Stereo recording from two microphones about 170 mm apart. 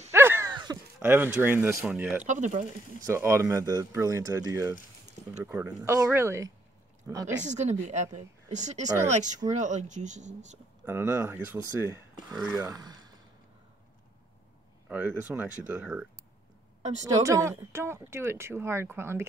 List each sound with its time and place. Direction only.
0.1 s a sound: 15° right (ahead or behind)
0.9 s speech: 10° right (ahead or behind)
2.2 s speech: 45° right (ahead or behind)
3.1 s speech: 15° right (ahead or behind)
7.4 s speech: 45° right (ahead or behind)
10.9 s speech: 15° right (ahead or behind)
14.9 s speech: 10° right (ahead or behind)
17.0 s speech: 20° right (ahead or behind)